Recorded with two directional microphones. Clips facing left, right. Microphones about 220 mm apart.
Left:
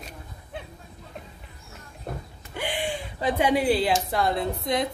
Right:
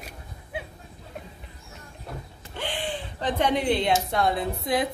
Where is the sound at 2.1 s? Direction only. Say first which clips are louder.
Left 3 dB; 50° left (ahead or behind).